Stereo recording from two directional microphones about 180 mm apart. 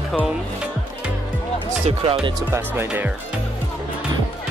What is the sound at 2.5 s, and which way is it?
Speech, 15° right (ahead or behind).